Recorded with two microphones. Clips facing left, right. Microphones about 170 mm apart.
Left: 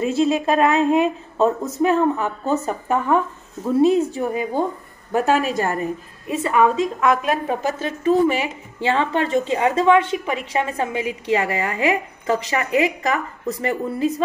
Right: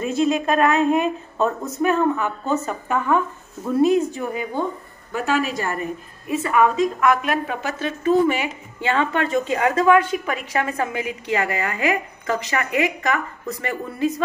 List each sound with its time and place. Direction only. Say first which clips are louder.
0.0 s a woman's voice: left 2 dB; 30° left (ahead or behind)
5.1 s a woman's voice: left 4 dB; 45° left (ahead or behind)
6.2 s a woman's voice: left 1 dB; 25° left (ahead or behind)